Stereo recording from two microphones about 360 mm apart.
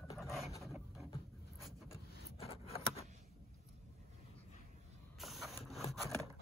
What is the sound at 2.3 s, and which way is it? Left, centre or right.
Scissors, centre.